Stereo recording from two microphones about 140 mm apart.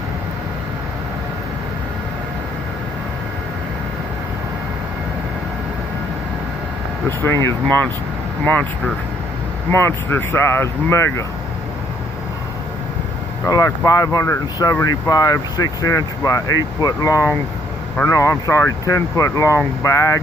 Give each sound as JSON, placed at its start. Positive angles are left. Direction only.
{"t": 7.1, "sound": "speech", "side_deg": 15}
{"t": 7.3, "sound": "speech", "side_deg": -30}
{"t": 8.5, "sound": "speech", "side_deg": 10}
{"t": 13.5, "sound": "speech", "side_deg": 25}